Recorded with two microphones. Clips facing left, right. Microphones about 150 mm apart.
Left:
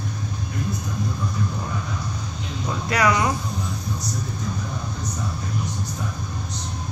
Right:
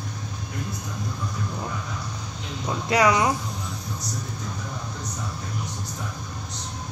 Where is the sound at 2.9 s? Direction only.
20° right (ahead or behind).